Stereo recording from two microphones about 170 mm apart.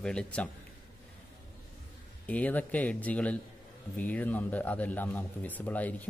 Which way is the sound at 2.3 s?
10° left (ahead or behind).